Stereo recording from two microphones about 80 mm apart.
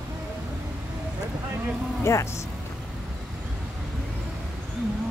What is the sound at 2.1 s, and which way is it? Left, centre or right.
Speech, left.